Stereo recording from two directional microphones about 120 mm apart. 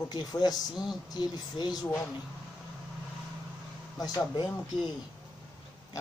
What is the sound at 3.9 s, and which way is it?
Speech, 30° left (ahead or behind).